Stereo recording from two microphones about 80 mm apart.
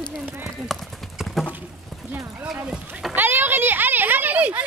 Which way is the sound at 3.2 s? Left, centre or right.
Right.